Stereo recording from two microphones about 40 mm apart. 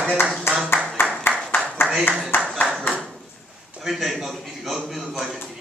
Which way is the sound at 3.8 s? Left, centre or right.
Centre.